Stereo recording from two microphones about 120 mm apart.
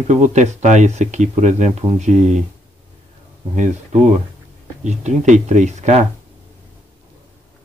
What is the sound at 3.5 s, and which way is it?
Speech, 90° right.